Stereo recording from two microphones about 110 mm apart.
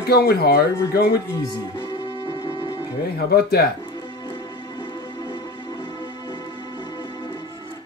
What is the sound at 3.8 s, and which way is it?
Music, 35° left (ahead or behind).